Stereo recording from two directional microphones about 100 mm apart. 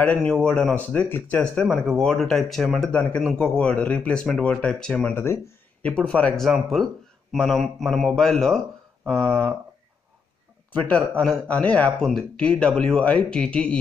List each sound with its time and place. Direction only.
0.3 s speech: 10° left (ahead or behind)
1.0 s speech: 20° left (ahead or behind); by 2.9 s centre (ahead or behind)
2.9 s speech: 15° left (ahead or behind)
5.1 s speech: 25° left (ahead or behind)
5.8 s speech: 10° left (ahead or behind)
6.3 s speech: centre (ahead or behind)
10.7 s speech: 15° left (ahead or behind)